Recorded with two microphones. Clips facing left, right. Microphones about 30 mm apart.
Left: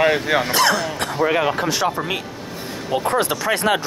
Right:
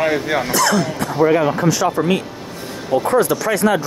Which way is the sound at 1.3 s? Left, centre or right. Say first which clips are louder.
Right 4 dB; left.